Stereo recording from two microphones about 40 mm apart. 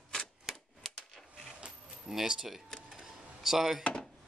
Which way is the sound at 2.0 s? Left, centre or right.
Centre.